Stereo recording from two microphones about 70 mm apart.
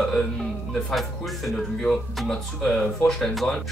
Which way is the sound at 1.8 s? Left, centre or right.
Centre.